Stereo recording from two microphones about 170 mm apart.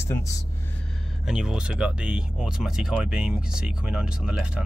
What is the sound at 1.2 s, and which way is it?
Speech, 5° right (ahead or behind).